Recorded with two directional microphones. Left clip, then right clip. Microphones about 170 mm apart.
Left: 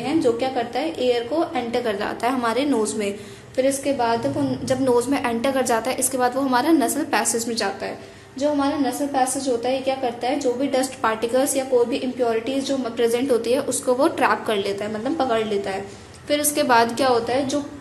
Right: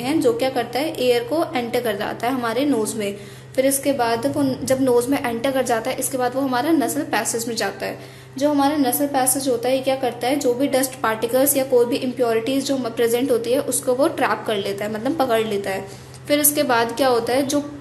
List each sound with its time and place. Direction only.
0.0 s a woman's voice: 15° right (ahead or behind); by 3.2 s centre (ahead or behind)
3.5 s a woman's voice: 15° right (ahead or behind)
4.8 s a woman's voice: centre (ahead or behind)
8.4 s a woman's voice: 20° right (ahead or behind); by 14.9 s centre (ahead or behind)
15.0 s a woman's voice: 15° right (ahead or behind)
16.6 s a woman's voice: centre (ahead or behind)
17.1 s a woman's voice: 15° right (ahead or behind)